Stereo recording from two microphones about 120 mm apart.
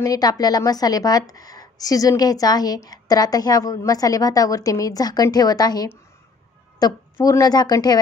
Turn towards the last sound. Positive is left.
turn(degrees=35)  # may be behind; listen again after turning